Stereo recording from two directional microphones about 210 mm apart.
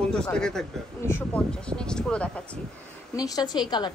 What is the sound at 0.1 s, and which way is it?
Speech, 5° left (ahead or behind).